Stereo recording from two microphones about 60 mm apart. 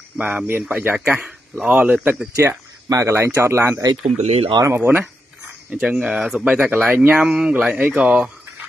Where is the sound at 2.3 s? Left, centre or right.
Right.